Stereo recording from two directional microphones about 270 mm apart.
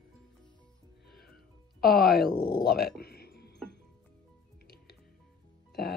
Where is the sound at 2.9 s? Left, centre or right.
Left.